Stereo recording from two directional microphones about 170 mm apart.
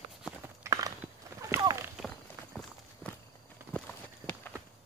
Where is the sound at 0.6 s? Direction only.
20° right (ahead or behind).